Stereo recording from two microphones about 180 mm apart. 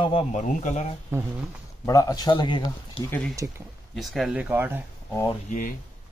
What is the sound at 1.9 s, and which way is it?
Speech, 20° left (ahead or behind).